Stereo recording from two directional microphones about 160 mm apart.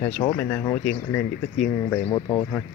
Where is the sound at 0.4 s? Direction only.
10° left (ahead or behind).